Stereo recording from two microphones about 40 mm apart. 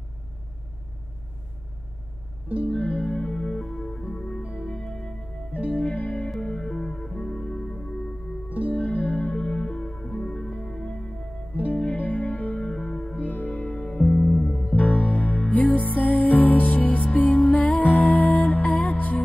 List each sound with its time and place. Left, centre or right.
2.4 s music: right
2.7 s music: left
5.8 s music: left
6.4 s music: left
8.5 s music: right
8.7 s music: left
9.4 s music: left
12.0 s music: left
12.5 s music: centre
13.2 s music: left
13.5 s music: left
14.8 s music: left